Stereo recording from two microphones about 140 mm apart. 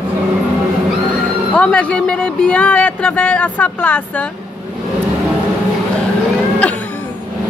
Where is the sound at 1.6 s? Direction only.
10° left (ahead or behind).